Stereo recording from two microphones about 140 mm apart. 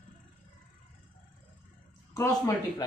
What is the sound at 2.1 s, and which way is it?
Speech, 25° left (ahead or behind).